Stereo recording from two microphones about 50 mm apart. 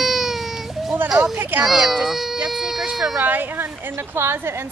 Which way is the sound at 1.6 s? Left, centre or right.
Centre.